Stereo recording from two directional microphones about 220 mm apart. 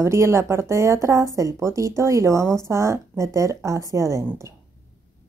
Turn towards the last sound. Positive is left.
turn(degrees=-15)  # may be behind; listen again after turning